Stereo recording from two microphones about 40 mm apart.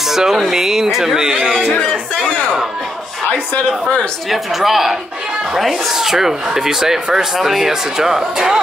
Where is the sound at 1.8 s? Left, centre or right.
Centre.